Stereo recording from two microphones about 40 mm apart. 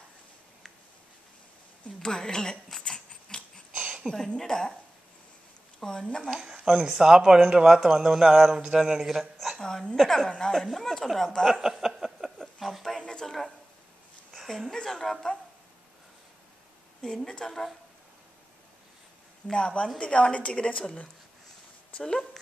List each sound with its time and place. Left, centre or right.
2.0 s a woman's voice: centre
3.3 s a sound: left
4.1 s a woman's voice: right
4.4 s a woman's voice: centre
5.8 s speech: centre
6.3 s speech: centre
9.2 s a sound: centre
9.6 s a woman's voice: centre
11.6 s a sound: centre
13.0 s a sound: centre
14.3 s a woman's voice: centre
17.0 s a woman's voice: left
19.4 s a woman's voice: left